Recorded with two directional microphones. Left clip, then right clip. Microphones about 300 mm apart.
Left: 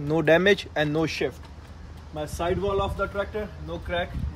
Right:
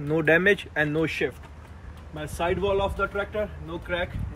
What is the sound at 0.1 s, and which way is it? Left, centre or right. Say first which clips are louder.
Speech: left 1 dB; left.